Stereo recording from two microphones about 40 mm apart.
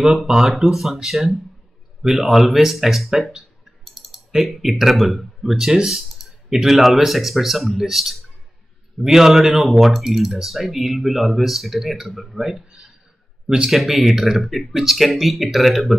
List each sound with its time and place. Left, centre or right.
0.0 s speech: centre
0.6 s speech: centre
1.1 s speech: centre